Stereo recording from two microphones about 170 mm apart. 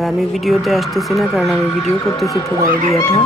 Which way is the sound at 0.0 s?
Centre (ahead or behind).